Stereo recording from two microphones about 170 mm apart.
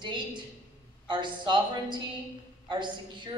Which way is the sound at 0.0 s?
25° right (ahead or behind).